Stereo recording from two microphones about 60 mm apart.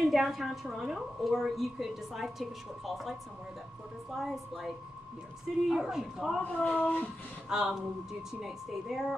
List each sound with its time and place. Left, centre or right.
0.1 s a woman's voice: centre
6.6 s speech: left
7.4 s a woman's voice: centre